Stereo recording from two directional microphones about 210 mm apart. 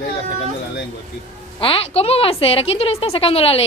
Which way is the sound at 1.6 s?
25° left (ahead or behind).